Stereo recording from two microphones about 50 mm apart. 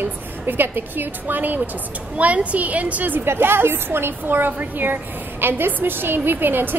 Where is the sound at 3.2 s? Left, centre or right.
Right.